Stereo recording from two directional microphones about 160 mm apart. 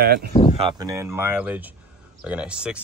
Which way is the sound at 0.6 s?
25° right (ahead or behind).